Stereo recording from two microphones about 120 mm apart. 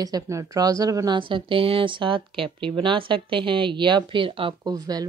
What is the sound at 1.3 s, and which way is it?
Speech, 50° right (ahead or behind).